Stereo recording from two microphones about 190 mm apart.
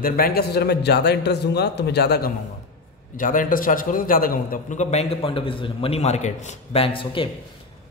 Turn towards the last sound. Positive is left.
turn(degrees=25)  # may be behind; listen again after turning